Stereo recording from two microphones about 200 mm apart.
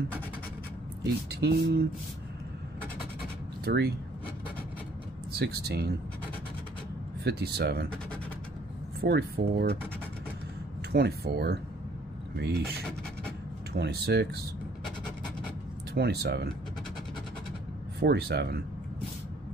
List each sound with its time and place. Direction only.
1.3 s speech: 55° right (ahead or behind)
3.6 s speech: 55° right (ahead or behind)
5.3 s speech: 55° right (ahead or behind)
7.2 s speech: 55° right (ahead or behind)
9.0 s speech: 55° right (ahead or behind)
10.9 s speech: 55° right (ahead or behind)
13.7 s speech: 55° right (ahead or behind)
15.9 s speech: 55° right (ahead or behind)
18.0 s speech: 55° right (ahead or behind)